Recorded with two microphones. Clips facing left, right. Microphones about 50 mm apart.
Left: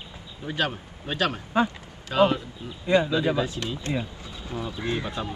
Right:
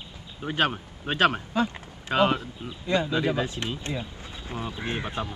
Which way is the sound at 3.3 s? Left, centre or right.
Right.